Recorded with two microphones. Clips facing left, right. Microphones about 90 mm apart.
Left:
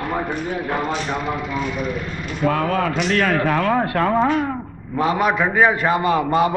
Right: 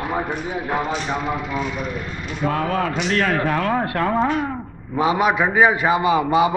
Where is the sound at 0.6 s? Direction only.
Centre (ahead or behind).